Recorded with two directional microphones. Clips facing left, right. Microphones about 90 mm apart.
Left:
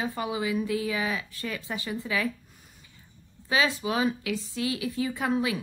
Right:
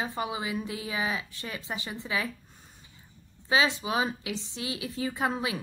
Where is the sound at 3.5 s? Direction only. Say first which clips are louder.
Even; 25° right (ahead or behind).